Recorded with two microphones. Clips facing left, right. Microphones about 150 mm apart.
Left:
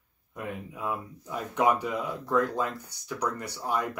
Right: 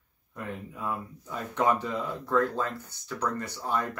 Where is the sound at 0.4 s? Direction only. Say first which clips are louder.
Left 1 dB; 15° left (ahead or behind).